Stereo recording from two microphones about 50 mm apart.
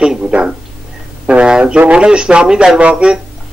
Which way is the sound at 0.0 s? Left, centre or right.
Centre.